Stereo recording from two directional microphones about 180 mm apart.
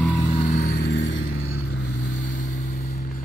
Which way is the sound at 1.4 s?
85° left.